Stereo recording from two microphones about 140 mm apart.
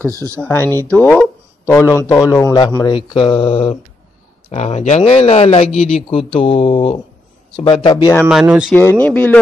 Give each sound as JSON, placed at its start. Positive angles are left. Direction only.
{"t": 0.0, "sound": "speech", "side_deg": -25}
{"t": 0.4, "sound": "a man's voice", "side_deg": 15}
{"t": 2.5, "sound": "speech", "side_deg": 30}
{"t": 4.5, "sound": "speech", "side_deg": 50}
{"t": 8.3, "sound": "speech", "side_deg": -5}
{"t": 9.0, "sound": "speech", "side_deg": 10}